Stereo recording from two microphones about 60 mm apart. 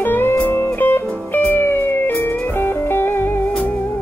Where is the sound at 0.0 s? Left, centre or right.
Left.